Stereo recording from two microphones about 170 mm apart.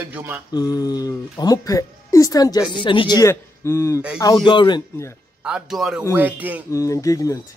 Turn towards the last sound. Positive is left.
turn(degrees=20)  # may be behind; listen again after turning